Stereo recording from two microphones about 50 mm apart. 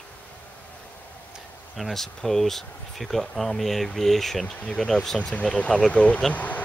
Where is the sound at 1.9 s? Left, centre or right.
Centre.